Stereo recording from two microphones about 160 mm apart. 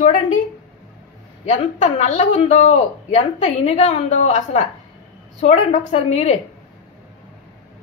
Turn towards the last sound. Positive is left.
turn(degrees=45)  # may be behind; listen again after turning